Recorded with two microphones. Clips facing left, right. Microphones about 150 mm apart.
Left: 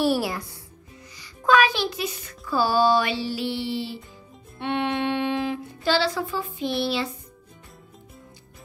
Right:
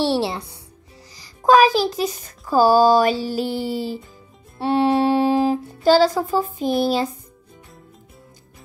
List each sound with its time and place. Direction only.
0.0 s a woman's voice: 25° right (ahead or behind)
1.1 s speech: 40° right (ahead or behind)